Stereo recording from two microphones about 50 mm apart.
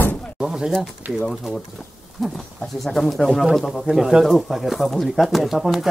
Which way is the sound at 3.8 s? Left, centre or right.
Centre.